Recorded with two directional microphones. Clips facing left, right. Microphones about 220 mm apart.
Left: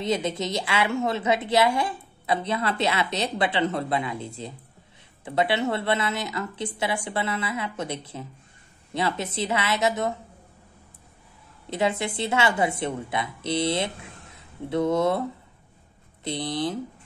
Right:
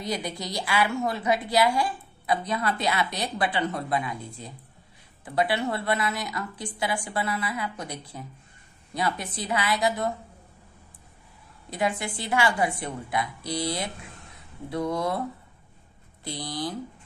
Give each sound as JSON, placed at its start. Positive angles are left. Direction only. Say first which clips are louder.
{"t": 0.0, "sound": "a woman's voice", "louder": "left 5 dB", "side_deg": 25}
{"t": 11.7, "sound": "a woman's voice", "louder": "left 3 dB", "side_deg": 25}
{"t": 16.3, "sound": "a woman's voice", "louder": "left 5 dB", "side_deg": 25}